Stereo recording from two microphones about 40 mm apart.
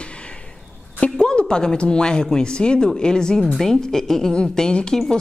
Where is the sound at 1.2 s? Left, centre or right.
Centre.